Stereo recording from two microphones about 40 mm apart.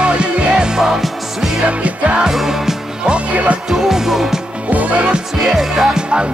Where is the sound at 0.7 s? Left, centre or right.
Centre.